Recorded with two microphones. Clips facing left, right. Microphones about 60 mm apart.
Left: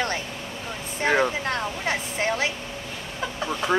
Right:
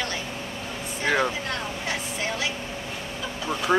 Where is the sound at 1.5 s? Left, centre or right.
Left.